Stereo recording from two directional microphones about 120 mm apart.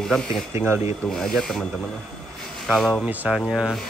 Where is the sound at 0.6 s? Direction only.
20° right (ahead or behind).